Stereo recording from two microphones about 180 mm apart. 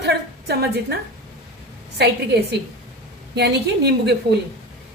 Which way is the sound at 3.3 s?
65° right (ahead or behind).